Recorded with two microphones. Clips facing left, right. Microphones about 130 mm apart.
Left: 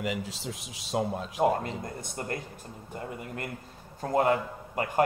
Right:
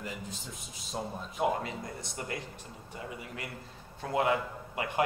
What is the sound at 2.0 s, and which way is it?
Speech, 50° left (ahead or behind).